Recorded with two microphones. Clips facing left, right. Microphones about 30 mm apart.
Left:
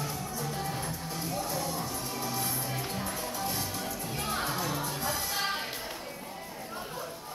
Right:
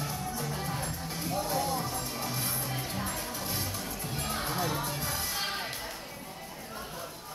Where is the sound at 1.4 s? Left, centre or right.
Right.